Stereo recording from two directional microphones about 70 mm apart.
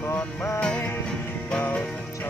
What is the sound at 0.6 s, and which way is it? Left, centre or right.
Music, centre.